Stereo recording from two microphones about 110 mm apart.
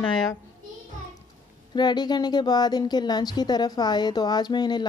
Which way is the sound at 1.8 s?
40° left (ahead or behind).